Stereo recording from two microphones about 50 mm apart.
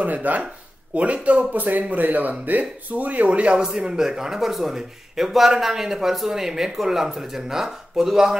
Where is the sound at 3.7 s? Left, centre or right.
Centre.